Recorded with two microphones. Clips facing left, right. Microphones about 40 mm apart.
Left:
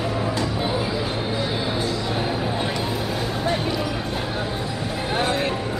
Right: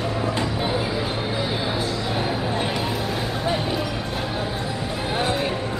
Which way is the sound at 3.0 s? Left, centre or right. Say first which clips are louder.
Even; centre.